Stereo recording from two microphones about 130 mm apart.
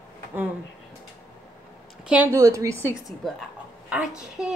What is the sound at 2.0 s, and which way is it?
Speech, 10° right (ahead or behind).